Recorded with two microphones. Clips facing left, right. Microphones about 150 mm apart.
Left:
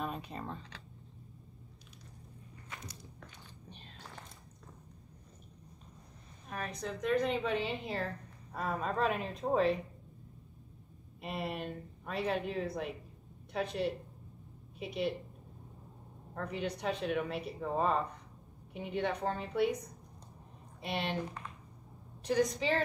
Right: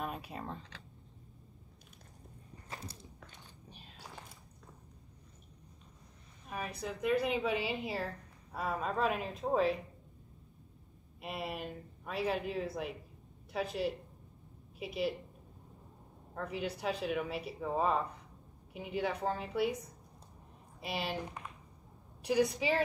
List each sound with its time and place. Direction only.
0.0 s computer keyboard: 5° right (ahead or behind)
2.7 s biting: 30° right (ahead or behind)
3.7 s a sound: 5° right (ahead or behind)
6.5 s a woman's voice: 5° right (ahead or behind)
11.1 s a woman's voice: centre (ahead or behind)
16.3 s a woman's voice: 5° right (ahead or behind)
22.2 s a woman's voice: 10° right (ahead or behind)